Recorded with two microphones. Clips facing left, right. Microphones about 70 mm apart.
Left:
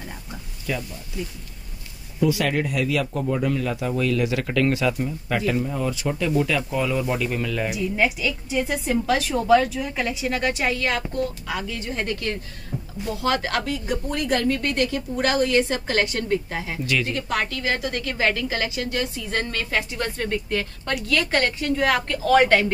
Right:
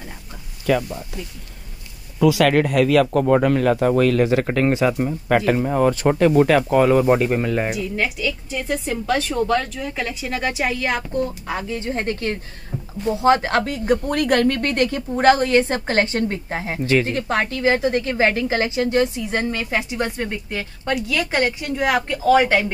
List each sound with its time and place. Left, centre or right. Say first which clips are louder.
0.7 s speech: right 9 dB; right
2.1 s speech: right 6 dB; right
4.3 s speech: right 4 dB; right
5.0 s speech: right 6 dB; right
7.7 s a woman's voice: left 1 dB; centre
11.4 s a woman's voice: right 4 dB; right; by 22.7 s centre